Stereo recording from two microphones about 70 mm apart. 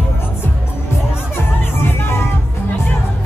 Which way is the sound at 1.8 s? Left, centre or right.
Left.